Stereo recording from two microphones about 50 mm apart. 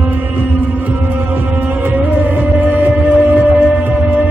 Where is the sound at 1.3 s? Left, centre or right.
Right.